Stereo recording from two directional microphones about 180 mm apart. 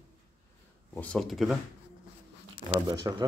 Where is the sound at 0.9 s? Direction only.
5° left (ahead or behind).